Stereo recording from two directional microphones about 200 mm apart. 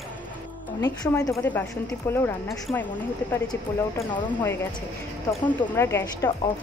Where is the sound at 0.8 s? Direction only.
15° left (ahead or behind).